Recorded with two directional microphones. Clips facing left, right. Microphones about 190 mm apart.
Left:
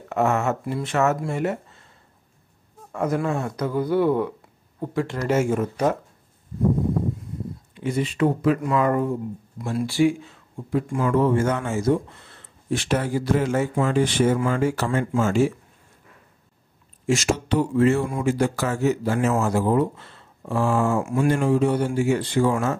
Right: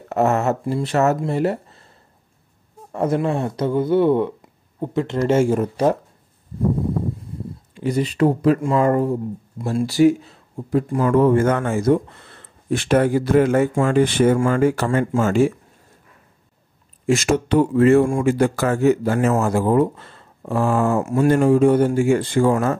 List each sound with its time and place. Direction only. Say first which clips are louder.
0.1 s speech: right 3 dB; 35° right (ahead or behind)
2.9 s speech: right 4 dB; 30° right (ahead or behind)
7.7 s speech: right 4 dB; 40° right (ahead or behind)
11.1 s speech: right 5 dB; 55° right (ahead or behind)
17.0 s speech: right 4 dB; 55° right (ahead or behind)
21.0 s speech: right 5 dB; 40° right (ahead or behind)